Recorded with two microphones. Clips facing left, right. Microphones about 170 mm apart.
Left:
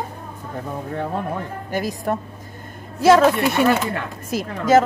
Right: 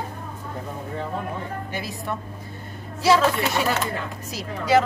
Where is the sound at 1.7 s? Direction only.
45° left (ahead or behind).